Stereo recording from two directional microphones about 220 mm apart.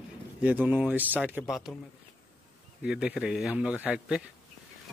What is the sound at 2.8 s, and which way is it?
Speech, 5° right (ahead or behind).